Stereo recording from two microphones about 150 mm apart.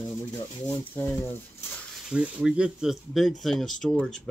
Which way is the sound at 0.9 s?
15° left (ahead or behind).